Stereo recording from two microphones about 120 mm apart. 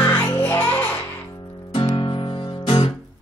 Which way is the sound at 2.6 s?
50° left (ahead or behind).